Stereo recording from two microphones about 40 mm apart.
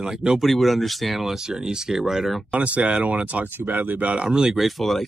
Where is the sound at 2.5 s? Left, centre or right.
Right.